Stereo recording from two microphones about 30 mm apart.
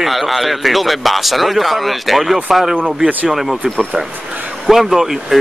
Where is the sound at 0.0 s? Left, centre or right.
Centre.